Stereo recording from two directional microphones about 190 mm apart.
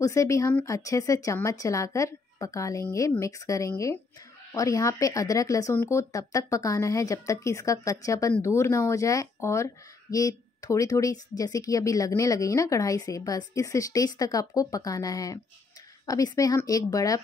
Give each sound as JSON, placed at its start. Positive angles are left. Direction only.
{"t": 0.0, "sound": "speech", "side_deg": 15}